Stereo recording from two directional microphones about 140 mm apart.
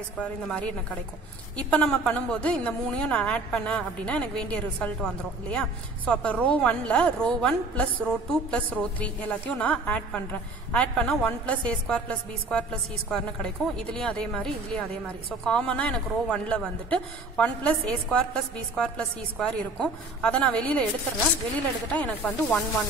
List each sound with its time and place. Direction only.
0.2 s a woman's voice: 5° left (ahead or behind)
21.9 s a woman's voice: 10° left (ahead or behind)